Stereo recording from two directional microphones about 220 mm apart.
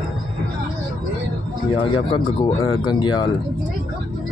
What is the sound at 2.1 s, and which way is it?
Speech, 25° left (ahead or behind).